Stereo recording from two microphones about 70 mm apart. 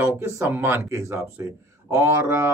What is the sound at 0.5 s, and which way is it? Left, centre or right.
A man's voice, right.